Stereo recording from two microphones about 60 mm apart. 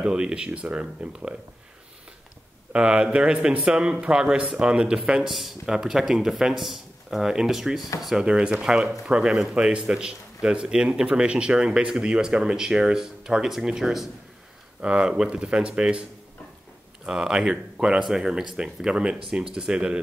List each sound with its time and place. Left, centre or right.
0.0 s a man's voice: centre
2.7 s a man's voice: centre
8.2 s a man's voice: centre
9.6 s a man's voice: centre